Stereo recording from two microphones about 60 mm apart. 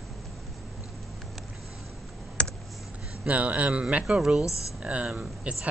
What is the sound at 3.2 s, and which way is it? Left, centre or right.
Speech, right.